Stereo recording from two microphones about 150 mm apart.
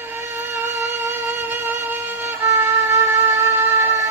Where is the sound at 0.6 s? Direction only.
15° right (ahead or behind).